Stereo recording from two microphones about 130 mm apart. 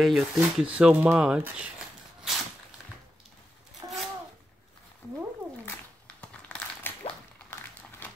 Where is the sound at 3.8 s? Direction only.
30° right (ahead or behind).